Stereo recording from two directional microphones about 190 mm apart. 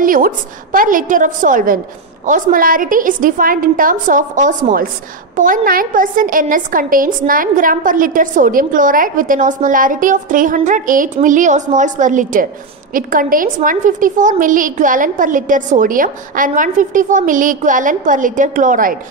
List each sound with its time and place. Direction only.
0.0 s a woman's voice: 45° right (ahead or behind)